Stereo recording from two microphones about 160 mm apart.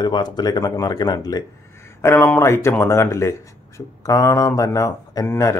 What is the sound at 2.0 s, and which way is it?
Speech, 15° left (ahead or behind).